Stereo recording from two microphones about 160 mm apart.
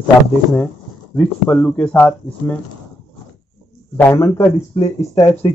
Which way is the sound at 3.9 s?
15° left (ahead or behind).